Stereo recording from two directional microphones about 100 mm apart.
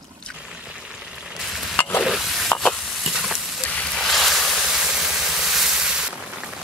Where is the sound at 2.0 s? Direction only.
Centre (ahead or behind).